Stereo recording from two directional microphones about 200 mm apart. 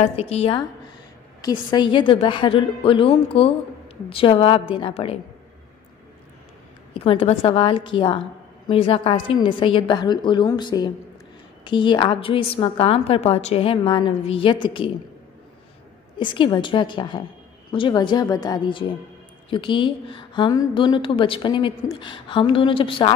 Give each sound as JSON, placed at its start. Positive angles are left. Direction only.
{"t": 0.0, "sound": "a woman's voice", "side_deg": 30}
{"t": 6.9, "sound": "a woman's voice", "side_deg": 30}
{"t": 16.2, "sound": "a woman's voice", "side_deg": 25}